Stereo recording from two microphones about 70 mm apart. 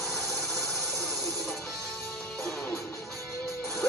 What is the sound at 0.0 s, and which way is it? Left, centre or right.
Music, centre.